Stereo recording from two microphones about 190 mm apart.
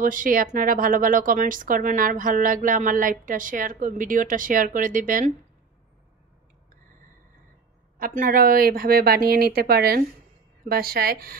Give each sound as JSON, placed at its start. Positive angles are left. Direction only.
{"t": 0.0, "sound": "speech", "side_deg": -45}
{"t": 8.0, "sound": "speech", "side_deg": -45}